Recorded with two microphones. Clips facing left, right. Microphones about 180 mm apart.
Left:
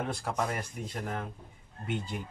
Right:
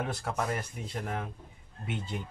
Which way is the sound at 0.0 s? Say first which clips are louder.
Even; 5° right (ahead or behind).